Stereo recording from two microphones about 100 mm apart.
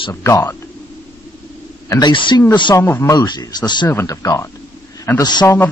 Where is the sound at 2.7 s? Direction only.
25° left (ahead or behind).